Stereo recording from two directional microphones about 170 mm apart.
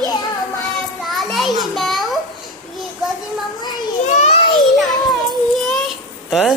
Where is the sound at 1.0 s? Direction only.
Centre (ahead or behind).